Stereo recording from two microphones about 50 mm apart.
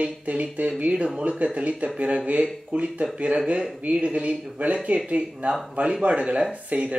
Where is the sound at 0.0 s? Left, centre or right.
Right.